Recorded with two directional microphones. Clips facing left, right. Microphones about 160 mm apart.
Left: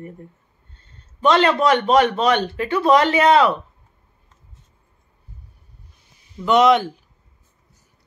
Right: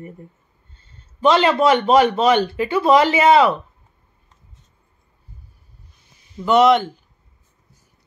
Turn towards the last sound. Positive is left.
turn(degrees=0)  # may be behind; listen again after turning